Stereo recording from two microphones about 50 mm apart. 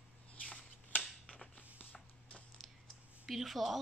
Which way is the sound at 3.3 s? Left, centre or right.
Centre.